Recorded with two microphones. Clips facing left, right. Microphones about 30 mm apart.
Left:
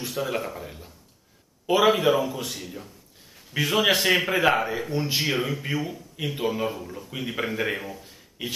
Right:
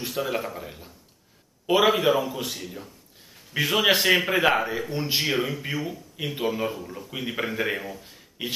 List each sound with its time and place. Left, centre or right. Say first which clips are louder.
0.0 s a man's voice: even; centre
8.4 s speech: right 1 dB; right